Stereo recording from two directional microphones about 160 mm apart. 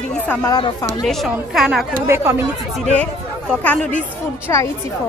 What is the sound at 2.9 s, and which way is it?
Speech, 10° left (ahead or behind).